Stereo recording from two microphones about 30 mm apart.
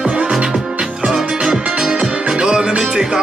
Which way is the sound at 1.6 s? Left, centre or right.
Right.